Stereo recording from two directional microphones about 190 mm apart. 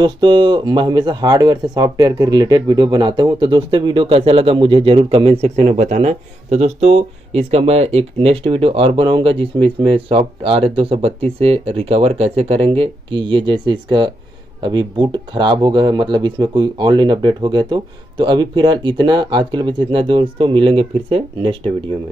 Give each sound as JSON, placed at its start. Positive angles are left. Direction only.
{"t": 0.0, "sound": "speech", "side_deg": -25}